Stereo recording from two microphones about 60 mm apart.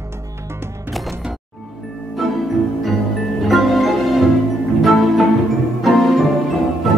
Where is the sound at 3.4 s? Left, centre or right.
Centre.